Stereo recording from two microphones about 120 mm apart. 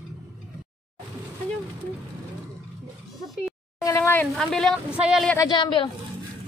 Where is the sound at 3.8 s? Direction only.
20° left (ahead or behind).